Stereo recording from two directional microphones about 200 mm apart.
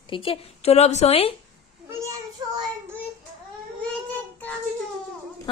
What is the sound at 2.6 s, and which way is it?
Child singing, 10° right (ahead or behind).